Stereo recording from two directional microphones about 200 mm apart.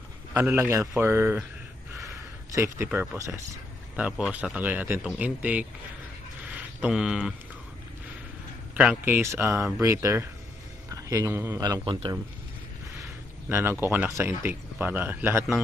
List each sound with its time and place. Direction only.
0.3 s speech: 10° right (ahead or behind)
2.5 s speech: 10° right (ahead or behind)
6.4 s mantra: 5° right (ahead or behind)
8.7 s speech: 5° right (ahead or behind); by 12.2 s 25° right (ahead or behind)
13.5 s speech: 10° right (ahead or behind)